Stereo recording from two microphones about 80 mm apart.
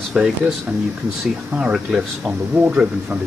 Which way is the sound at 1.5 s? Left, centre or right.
Centre.